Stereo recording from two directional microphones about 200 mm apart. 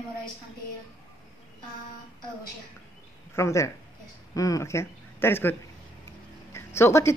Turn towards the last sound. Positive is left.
turn(degrees=15)  # may be behind; listen again after turning